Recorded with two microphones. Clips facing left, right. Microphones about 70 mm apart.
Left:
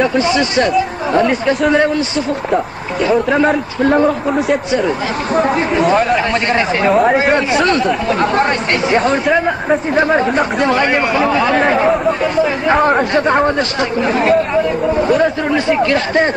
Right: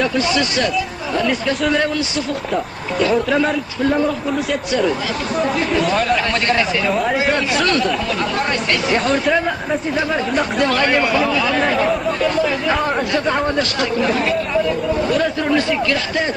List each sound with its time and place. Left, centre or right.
0.0 s speech: left
3.8 s a man's voice: left
5.9 s speech: left
6.8 s speech: left
7.5 s speech: left
8.1 s a man's voice: left
8.8 s speech: left
9.7 s speech: left
11.2 s speech: left
12.7 s a man's voice: left